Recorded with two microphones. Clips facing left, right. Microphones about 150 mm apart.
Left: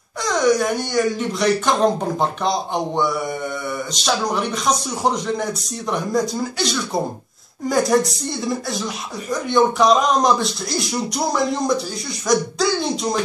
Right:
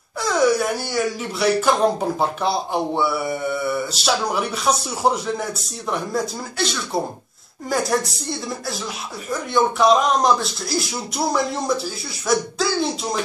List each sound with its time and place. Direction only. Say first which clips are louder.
0.2 s speech: left 1 dB; 5° right (ahead or behind)